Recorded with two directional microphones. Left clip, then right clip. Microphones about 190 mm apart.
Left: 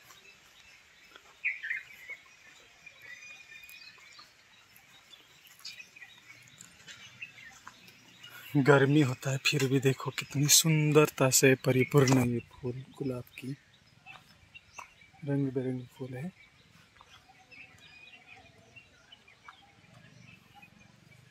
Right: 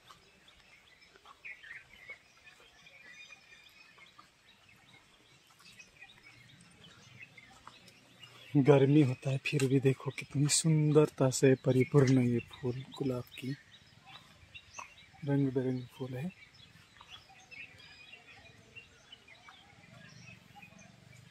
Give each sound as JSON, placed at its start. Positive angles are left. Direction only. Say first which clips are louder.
{"t": 2.1, "sound": "a sound", "louder": "left 4 dB", "side_deg": 40}
{"t": 8.6, "sound": "speech", "louder": "left 2 dB", "side_deg": 0}
{"t": 15.2, "sound": "speech", "louder": "even", "side_deg": -10}